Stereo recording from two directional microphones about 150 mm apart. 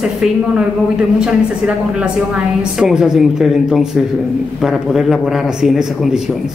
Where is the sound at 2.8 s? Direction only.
5° right (ahead or behind).